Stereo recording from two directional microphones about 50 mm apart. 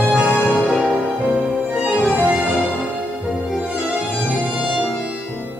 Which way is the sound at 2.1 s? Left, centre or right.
Right.